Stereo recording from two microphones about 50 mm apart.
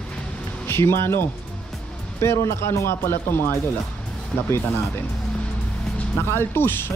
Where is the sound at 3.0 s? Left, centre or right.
Left.